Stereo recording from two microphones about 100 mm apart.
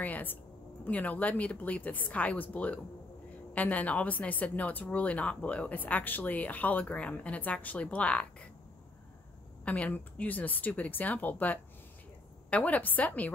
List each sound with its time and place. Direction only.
0.0 s a woman's voice: 15° left (ahead or behind)
9.7 s a woman's voice: 15° left (ahead or behind)